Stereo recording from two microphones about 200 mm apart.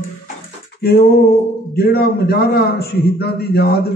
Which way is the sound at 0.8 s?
50° left (ahead or behind).